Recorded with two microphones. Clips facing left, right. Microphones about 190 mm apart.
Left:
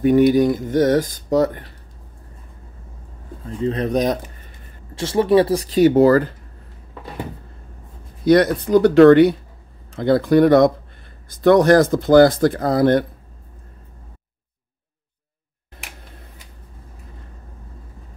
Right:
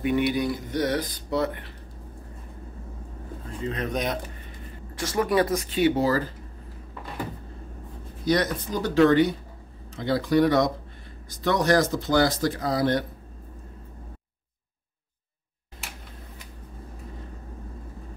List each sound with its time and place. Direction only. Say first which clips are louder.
0.0 s speech: left 10 dB; 45° left (ahead or behind)
3.6 s speech: left 9 dB; 35° left (ahead or behind)
6.0 s speech: left 10 dB; 60° left (ahead or behind)
8.3 s speech: left 11 dB; 65° left (ahead or behind)
9.9 s speech: left 7 dB; 55° left (ahead or behind)